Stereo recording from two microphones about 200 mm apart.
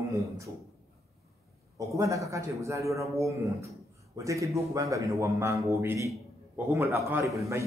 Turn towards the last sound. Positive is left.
turn(degrees=-15)  # may be behind; listen again after turning